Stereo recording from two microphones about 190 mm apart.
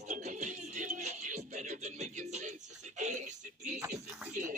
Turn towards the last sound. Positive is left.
turn(degrees=-45)  # may be behind; listen again after turning